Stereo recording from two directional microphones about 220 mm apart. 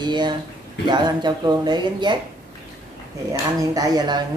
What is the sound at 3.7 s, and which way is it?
Speech, 15° right (ahead or behind).